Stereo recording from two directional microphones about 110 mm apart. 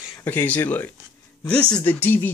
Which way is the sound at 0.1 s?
20° left (ahead or behind).